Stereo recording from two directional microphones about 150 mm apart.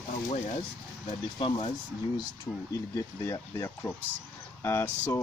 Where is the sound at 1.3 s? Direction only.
30° left (ahead or behind).